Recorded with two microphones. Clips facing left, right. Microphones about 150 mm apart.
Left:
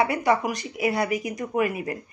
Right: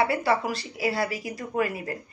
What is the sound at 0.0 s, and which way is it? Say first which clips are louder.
Speech: left 2 dB; 20° left (ahead or behind).